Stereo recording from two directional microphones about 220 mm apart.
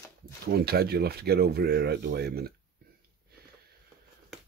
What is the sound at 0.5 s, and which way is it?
Speech, 45° right (ahead or behind).